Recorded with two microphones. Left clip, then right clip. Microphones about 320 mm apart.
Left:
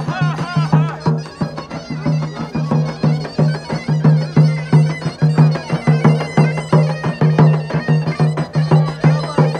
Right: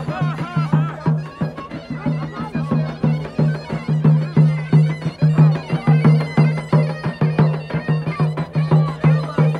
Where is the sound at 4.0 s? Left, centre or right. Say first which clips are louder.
Left 2 dB; left.